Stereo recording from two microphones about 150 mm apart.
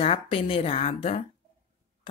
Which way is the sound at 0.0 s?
40° left (ahead or behind).